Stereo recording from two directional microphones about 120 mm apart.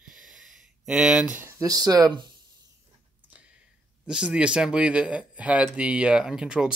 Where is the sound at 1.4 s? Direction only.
25° right (ahead or behind).